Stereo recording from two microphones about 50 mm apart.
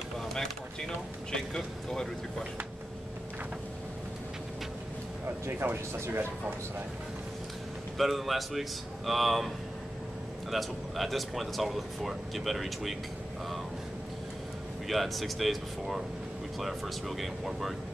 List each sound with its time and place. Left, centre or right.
0.2 s a sound: centre
1.3 s speech: centre
5.5 s speech: right
8.0 s speech: centre
10.5 s speech: centre
14.9 s speech: centre